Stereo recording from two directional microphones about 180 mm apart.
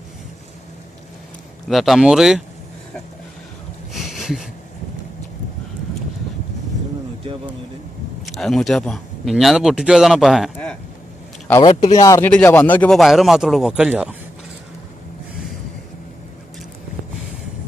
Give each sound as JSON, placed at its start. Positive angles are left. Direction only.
{"t": 1.7, "sound": "a man's voice", "side_deg": 0}
{"t": 3.9, "sound": "a sound", "side_deg": 0}
{"t": 8.2, "sound": "speech", "side_deg": 0}
{"t": 11.6, "sound": "speech", "side_deg": 35}
{"t": 11.9, "sound": "a man's voice", "side_deg": 20}